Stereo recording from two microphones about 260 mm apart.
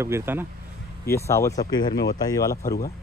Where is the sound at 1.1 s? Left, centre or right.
Centre.